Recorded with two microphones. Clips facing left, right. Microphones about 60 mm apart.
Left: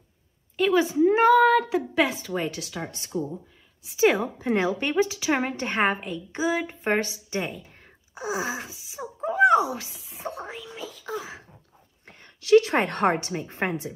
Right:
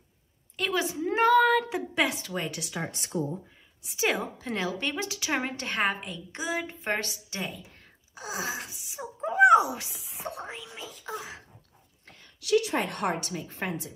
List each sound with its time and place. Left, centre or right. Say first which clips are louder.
0.6 s a woman's voice: left 9 dB; centre
2.6 s speech: even; centre
3.8 s a woman's voice: left 7 dB; centre
4.4 s a woman's voice: left 7 dB; left
5.0 s a woman's voice: left 5 dB; centre
12.2 s a woman's voice: left 8 dB; left
13.0 s a woman's voice: left 6 dB; left